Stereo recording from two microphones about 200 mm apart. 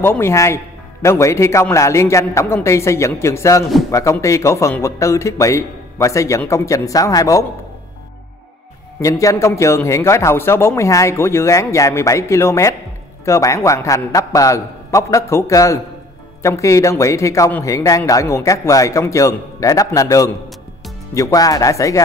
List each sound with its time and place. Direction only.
0.0 s a man's voice: 10° left (ahead or behind)
9.0 s a man's voice: 15° left (ahead or behind)